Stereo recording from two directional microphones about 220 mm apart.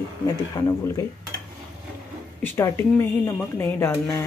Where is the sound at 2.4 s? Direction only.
10° left (ahead or behind).